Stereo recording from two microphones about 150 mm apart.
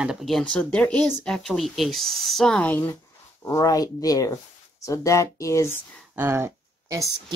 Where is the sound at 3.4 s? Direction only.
20° left (ahead or behind).